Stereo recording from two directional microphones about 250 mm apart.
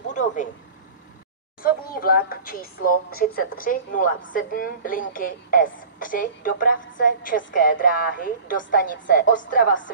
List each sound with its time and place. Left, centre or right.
0.1 s speech: left
1.6 s a woman's voice: left